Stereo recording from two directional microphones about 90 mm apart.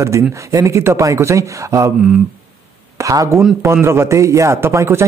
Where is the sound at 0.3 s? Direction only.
35° right (ahead or behind).